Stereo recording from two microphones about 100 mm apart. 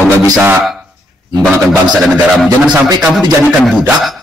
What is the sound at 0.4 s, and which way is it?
Speech, 20° right (ahead or behind).